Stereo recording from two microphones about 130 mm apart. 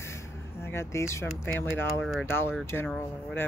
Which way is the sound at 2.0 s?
Centre (ahead or behind).